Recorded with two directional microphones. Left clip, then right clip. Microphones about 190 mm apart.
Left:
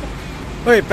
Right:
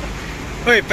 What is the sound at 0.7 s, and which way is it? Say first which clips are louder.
Speech: left 1 dB; 25° left (ahead or behind).